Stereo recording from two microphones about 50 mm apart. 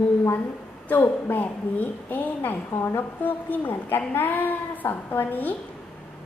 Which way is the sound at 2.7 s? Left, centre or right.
Left.